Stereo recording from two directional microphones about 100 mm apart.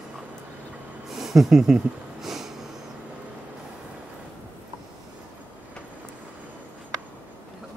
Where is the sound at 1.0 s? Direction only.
5° right (ahead or behind).